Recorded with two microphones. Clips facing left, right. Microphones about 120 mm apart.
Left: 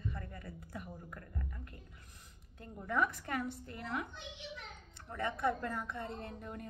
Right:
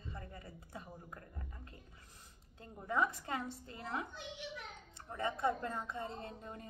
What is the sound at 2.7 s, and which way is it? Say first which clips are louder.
Speech: left 1 dB; 20° right (ahead or behind).